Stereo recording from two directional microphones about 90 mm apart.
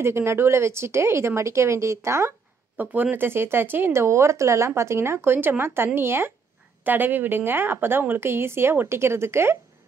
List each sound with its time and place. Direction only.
0.0 s speech: 30° right (ahead or behind)
2.8 s speech: 20° right (ahead or behind)